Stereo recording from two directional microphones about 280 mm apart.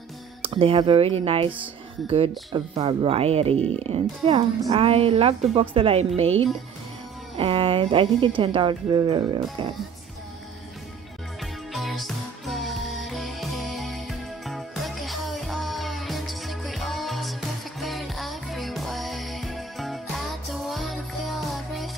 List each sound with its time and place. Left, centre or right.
0.4 s speech: centre
6.2 s speech: right
7.3 s speech: centre
11.7 s music: centre